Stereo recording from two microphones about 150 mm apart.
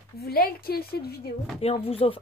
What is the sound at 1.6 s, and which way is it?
Speech, 40° left (ahead or behind).